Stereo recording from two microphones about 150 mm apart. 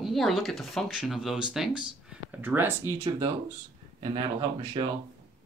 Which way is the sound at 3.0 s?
25° right (ahead or behind).